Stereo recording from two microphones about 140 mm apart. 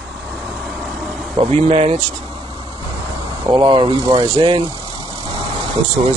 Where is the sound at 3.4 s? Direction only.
35° right (ahead or behind).